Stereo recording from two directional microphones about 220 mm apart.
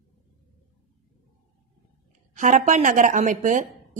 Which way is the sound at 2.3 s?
35° right (ahead or behind).